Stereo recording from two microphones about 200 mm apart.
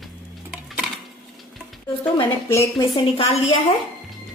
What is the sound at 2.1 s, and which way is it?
Speech, 15° left (ahead or behind).